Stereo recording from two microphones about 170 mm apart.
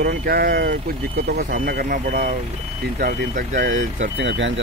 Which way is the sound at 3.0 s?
65° right (ahead or behind).